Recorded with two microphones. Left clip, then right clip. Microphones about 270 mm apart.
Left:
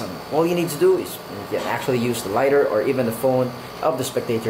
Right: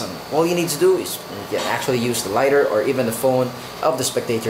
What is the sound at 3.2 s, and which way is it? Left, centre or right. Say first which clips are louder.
Speech: right 1 dB; left.